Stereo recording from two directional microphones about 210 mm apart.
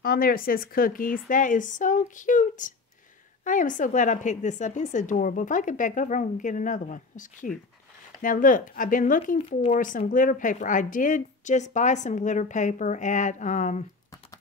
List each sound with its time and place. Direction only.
0.0 s speech: 45° left (ahead or behind)